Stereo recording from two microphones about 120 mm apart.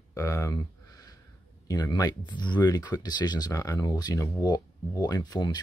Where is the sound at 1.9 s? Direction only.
35° left (ahead or behind).